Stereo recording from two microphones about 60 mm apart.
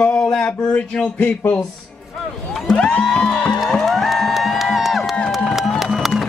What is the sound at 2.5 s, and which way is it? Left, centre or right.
Speech, centre.